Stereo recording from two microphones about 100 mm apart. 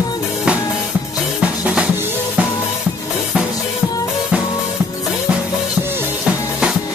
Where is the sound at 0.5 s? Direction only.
10° right (ahead or behind).